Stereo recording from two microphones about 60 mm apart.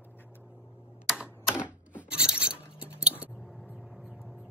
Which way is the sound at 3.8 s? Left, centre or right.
Centre.